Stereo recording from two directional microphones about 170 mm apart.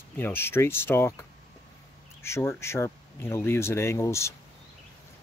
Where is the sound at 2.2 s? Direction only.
15° left (ahead or behind).